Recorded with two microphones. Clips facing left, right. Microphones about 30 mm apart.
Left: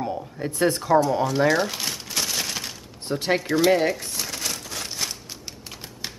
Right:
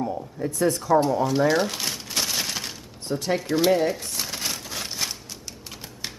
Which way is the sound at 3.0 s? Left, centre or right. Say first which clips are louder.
Left 2 dB; left.